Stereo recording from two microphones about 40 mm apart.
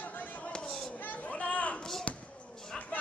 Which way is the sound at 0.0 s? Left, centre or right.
Left.